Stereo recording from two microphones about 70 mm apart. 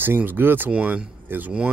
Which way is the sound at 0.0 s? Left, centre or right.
Right.